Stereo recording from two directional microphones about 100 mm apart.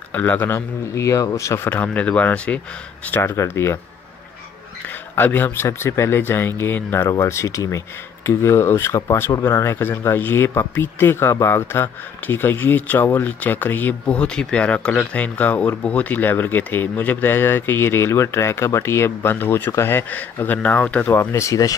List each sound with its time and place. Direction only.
0.1 s speech: 20° left (ahead or behind)
3.1 s speech: 25° left (ahead or behind)
5.1 s speech: 20° left (ahead or behind)
21.1 s speech: 30° left (ahead or behind)